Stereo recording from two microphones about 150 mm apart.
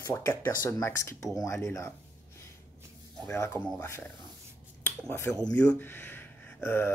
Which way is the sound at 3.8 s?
15° left (ahead or behind).